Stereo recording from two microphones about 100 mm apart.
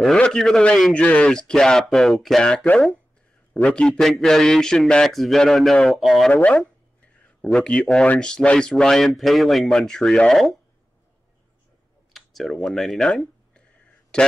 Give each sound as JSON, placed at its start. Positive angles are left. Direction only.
{"t": 0.0, "sound": "a man's voice", "side_deg": 5}
{"t": 6.3, "sound": "speech", "side_deg": 15}
{"t": 12.1, "sound": "a sound", "side_deg": 0}